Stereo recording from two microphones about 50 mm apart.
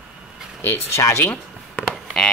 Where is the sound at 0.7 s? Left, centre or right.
Left.